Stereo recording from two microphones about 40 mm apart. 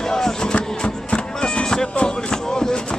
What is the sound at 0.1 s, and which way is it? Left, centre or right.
Music, centre.